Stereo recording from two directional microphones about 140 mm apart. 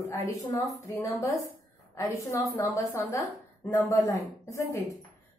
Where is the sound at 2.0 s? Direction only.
25° left (ahead or behind).